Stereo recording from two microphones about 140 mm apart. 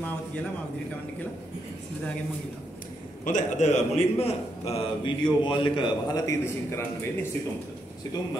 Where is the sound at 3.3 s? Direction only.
60° left (ahead or behind).